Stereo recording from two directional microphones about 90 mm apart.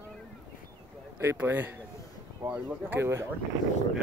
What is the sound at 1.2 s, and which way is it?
Speech, 25° right (ahead or behind).